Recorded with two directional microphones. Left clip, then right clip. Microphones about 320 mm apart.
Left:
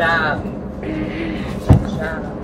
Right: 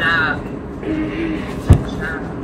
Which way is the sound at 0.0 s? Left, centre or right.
Left.